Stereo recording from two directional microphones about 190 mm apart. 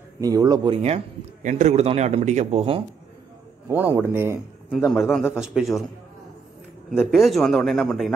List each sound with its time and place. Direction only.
0.2 s speech: 20° right (ahead or behind)
0.8 s a man's voice: 35° right (ahead or behind)
3.6 s a man's voice: 10° right (ahead or behind)
4.6 s speech: centre (ahead or behind)
6.9 s speech: 5° right (ahead or behind)